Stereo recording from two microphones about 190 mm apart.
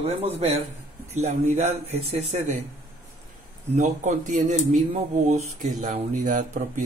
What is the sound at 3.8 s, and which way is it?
Speech, 40° right (ahead or behind).